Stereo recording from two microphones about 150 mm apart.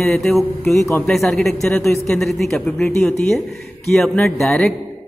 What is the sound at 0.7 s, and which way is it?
Speech, 20° left (ahead or behind).